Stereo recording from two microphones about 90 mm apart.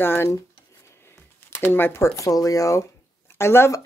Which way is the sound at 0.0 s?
25° left (ahead or behind).